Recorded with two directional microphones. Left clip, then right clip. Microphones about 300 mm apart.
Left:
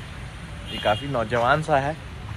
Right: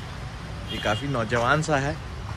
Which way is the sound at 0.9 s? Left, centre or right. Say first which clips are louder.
Left 3 dB; centre.